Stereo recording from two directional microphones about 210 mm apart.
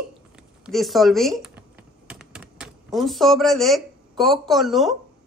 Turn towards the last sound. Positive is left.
turn(degrees=0)  # may be behind; listen again after turning